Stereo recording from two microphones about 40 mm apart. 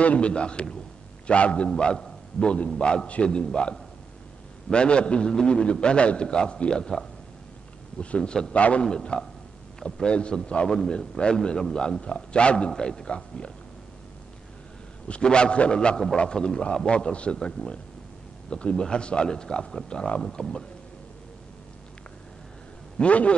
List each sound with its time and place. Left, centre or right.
0.0 s speech: left
8.2 s speech: centre
8.5 s a man's voice: left
8.8 s speech: left
9.8 s a sound: centre
10.0 s speech: left
10.7 s a man's voice: centre
15.0 s a man's voice: left
22.9 s a man's voice: left